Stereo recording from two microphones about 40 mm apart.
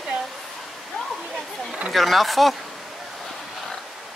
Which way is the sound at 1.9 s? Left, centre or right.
Centre.